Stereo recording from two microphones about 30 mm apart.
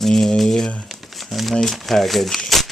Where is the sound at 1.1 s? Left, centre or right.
Centre.